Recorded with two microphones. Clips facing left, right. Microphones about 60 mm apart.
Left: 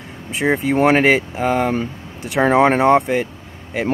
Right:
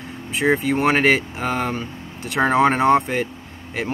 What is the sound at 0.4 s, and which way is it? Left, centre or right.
Speech, centre.